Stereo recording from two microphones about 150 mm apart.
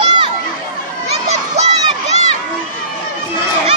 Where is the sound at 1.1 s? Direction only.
50° right (ahead or behind).